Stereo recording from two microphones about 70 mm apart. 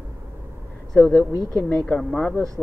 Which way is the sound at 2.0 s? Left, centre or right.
Centre.